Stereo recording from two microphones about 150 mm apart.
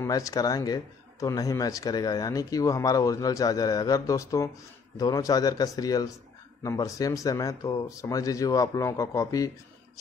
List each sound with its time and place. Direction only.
0.0 s speech: 25° left (ahead or behind)